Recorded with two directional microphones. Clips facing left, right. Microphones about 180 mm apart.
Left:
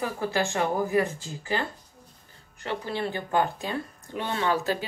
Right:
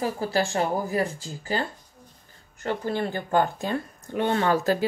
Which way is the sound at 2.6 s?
45° right (ahead or behind).